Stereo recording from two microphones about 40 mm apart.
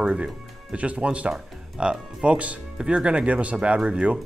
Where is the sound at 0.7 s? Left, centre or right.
Right.